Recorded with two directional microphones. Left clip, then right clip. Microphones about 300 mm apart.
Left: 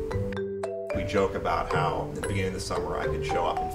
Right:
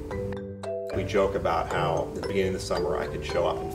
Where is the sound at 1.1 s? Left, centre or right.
Left.